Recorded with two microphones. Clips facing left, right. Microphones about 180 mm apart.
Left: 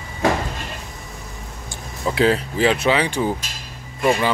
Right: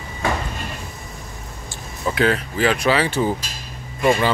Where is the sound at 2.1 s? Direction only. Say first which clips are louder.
Left 2 dB; 30° left (ahead or behind).